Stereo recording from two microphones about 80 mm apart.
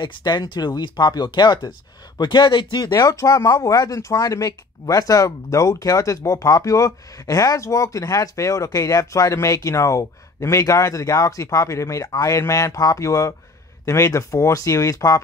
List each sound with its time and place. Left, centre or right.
0.0 s speech: left
2.8 s speech: left